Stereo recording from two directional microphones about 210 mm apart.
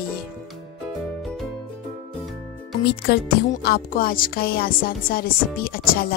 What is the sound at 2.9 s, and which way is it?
Speech, 45° left (ahead or behind).